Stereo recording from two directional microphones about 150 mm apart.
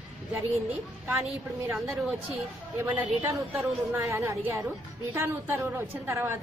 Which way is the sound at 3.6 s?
15° right (ahead or behind).